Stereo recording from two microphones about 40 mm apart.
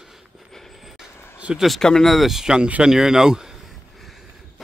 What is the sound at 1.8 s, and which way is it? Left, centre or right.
Speech, centre.